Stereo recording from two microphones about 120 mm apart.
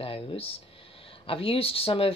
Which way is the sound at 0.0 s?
50° left (ahead or behind).